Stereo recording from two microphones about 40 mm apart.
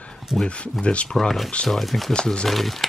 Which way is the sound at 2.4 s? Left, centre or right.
Centre.